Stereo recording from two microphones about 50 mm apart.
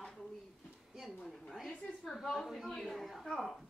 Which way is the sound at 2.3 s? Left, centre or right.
Centre.